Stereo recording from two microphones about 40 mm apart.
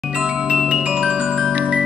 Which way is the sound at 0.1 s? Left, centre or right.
Right.